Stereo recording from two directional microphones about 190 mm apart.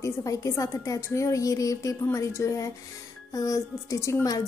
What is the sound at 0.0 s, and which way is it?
A woman's voice, 15° left (ahead or behind).